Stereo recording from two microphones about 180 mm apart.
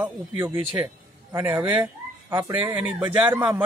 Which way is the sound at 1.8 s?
20° right (ahead or behind).